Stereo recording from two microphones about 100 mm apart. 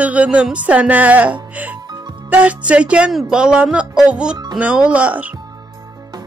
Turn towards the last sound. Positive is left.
turn(degrees=-15)  # may be behind; listen again after turning